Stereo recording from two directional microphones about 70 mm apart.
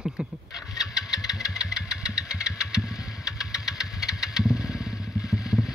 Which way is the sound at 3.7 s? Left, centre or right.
Left.